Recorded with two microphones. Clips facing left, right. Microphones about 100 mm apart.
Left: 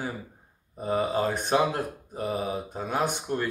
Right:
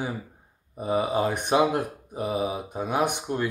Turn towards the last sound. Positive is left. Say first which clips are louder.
# right 2 dB
turn(degrees=-15)  # may be behind; listen again after turning